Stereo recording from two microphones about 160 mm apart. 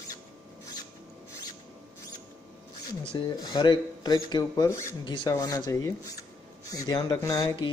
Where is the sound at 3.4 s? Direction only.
25° left (ahead or behind).